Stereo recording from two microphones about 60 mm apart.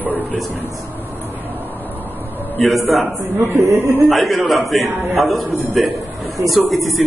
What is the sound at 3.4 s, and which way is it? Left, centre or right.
Speech, right.